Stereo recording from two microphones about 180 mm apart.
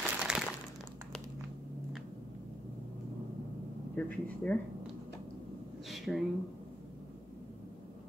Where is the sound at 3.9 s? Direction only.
10° left (ahead or behind).